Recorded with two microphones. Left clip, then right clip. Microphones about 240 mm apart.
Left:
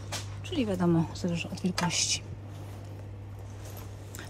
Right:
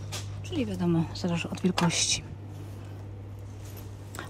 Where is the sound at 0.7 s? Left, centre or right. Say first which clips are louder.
Left 4 dB; centre.